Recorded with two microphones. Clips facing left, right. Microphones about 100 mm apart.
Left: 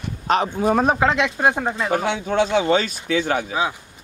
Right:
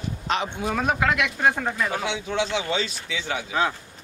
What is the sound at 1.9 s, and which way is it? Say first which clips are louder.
Speech: left 6 dB; 50° left (ahead or behind).